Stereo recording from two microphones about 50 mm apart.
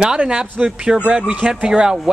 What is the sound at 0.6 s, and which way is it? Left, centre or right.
Speech, centre.